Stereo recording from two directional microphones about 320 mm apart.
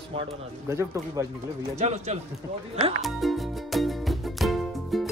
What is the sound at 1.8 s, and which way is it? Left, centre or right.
Speech, centre.